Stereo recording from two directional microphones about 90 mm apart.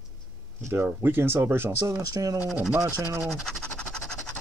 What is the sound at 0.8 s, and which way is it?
Speech, 25° right (ahead or behind).